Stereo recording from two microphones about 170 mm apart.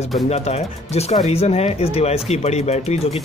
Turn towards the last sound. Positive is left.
turn(degrees=40)  # may be behind; listen again after turning